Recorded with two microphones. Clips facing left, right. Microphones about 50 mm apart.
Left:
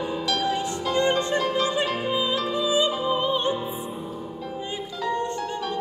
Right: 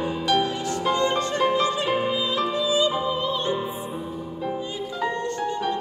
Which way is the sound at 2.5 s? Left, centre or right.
Left.